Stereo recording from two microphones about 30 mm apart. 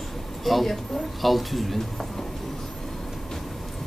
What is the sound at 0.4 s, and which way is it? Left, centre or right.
Speech, centre.